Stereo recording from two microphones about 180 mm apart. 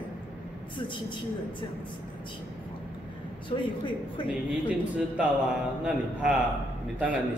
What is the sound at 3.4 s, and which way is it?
Speech, 25° left (ahead or behind).